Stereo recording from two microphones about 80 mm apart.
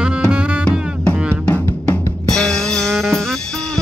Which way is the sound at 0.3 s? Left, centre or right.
Centre.